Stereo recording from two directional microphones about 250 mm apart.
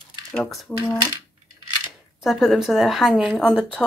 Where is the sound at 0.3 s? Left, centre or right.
Centre.